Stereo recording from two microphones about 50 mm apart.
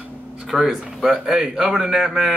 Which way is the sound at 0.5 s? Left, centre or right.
Centre.